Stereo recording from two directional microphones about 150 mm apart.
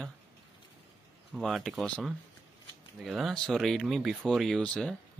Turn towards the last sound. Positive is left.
turn(degrees=5)  # may be behind; listen again after turning